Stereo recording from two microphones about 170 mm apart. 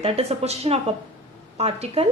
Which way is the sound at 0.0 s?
35° right (ahead or behind).